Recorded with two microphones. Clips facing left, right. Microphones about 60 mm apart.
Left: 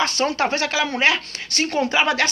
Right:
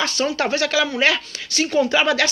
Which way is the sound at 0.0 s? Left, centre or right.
Left.